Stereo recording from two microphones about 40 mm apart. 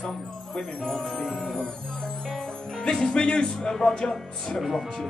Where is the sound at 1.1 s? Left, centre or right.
Left.